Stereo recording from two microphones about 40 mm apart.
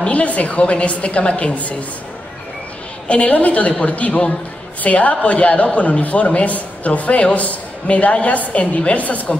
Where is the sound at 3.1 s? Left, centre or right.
Left.